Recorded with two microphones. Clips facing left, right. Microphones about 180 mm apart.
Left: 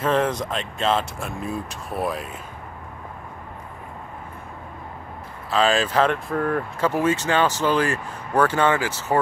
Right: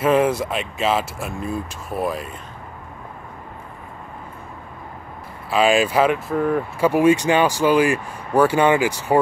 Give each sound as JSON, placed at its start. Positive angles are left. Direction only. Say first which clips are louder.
{"t": 0.0, "sound": "speech", "louder": "right 4 dB", "side_deg": -10}
{"t": 5.5, "sound": "speech", "louder": "right 3 dB", "side_deg": -10}